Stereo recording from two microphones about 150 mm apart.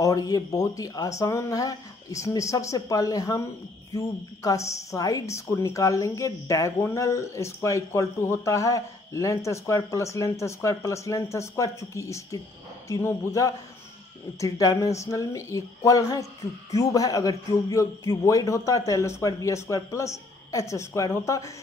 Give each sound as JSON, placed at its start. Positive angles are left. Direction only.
{"t": 0.0, "sound": "a woman's voice", "side_deg": 25}